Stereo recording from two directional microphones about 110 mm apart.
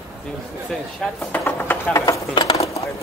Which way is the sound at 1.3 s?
20° left (ahead or behind).